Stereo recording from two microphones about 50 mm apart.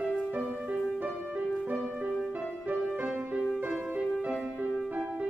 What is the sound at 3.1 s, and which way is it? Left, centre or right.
Music, right.